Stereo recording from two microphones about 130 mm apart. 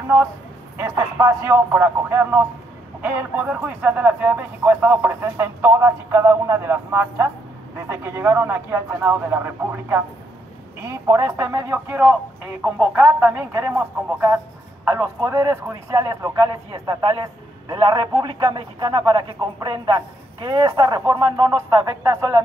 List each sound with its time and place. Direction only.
0.7 s a man's voice: 20° right (ahead or behind)
10.8 s a man's voice: 20° right (ahead or behind)